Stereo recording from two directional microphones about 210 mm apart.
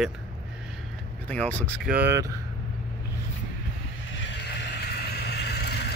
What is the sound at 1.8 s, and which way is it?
Speech, 10° right (ahead or behind).